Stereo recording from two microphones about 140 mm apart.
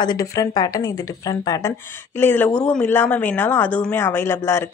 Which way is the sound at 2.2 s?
15° left (ahead or behind).